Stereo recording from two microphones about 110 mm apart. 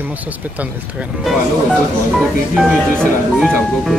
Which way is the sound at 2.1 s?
5° right (ahead or behind).